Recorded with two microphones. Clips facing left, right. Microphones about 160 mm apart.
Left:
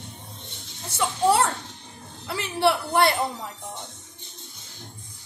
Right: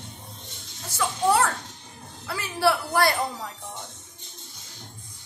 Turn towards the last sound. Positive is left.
turn(degrees=25)  # may be behind; listen again after turning